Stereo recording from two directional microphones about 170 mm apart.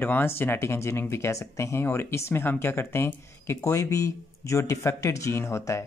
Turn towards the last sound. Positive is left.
turn(degrees=15)  # may be behind; listen again after turning